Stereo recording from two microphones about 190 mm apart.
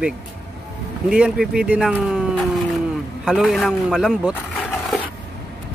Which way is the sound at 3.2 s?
Centre (ahead or behind).